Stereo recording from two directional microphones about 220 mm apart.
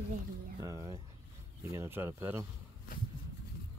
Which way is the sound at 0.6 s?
15° right (ahead or behind).